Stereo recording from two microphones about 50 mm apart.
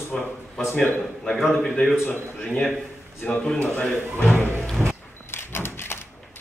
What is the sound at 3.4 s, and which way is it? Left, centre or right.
Speech, centre.